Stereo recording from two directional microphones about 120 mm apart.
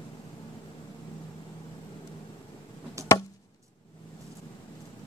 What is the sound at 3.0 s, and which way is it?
Chop, 25° right (ahead or behind).